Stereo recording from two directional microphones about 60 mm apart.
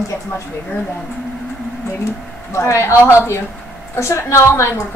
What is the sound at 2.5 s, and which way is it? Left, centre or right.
A woman's voice, left.